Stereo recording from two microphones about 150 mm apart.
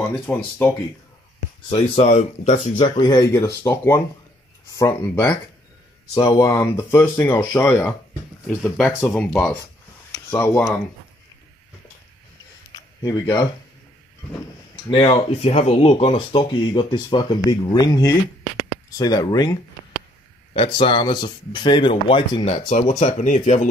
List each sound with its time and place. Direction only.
0.3 s speech: 15° left (ahead or behind)
2.0 s speech: 55° left (ahead or behind)
3.0 s speech: 25° left (ahead or behind)
8.7 s speech: centre (ahead or behind)
10.1 s a sound: 15° left (ahead or behind)
12.7 s a sound: 25° left (ahead or behind)
14.9 s speech: 35° left (ahead or behind); by 23.7 s 55° left (ahead or behind)